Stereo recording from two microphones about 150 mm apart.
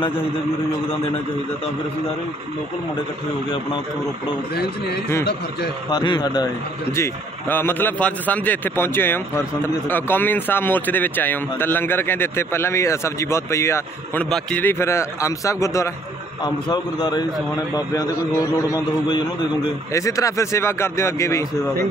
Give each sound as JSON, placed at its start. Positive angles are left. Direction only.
{"t": 5.9, "sound": "speech", "side_deg": 30}
{"t": 6.9, "sound": "a man's voice", "side_deg": 15}